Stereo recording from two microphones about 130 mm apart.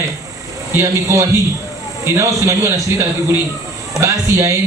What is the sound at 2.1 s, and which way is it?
Speech, 20° right (ahead or behind).